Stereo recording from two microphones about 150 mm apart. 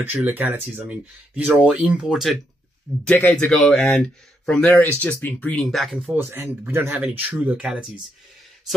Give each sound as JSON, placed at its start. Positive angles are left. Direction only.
{"t": 0.0, "sound": "speech", "side_deg": -15}
{"t": 3.1, "sound": "speech", "side_deg": 10}
{"t": 6.1, "sound": "speech", "side_deg": -15}